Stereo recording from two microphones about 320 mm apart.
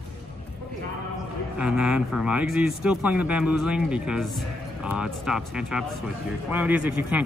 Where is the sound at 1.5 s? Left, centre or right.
Centre.